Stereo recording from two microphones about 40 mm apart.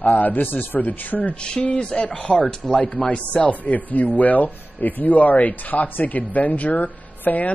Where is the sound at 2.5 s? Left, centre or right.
Left.